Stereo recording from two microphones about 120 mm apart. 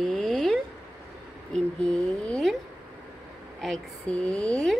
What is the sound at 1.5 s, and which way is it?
Speech, 10° left (ahead or behind).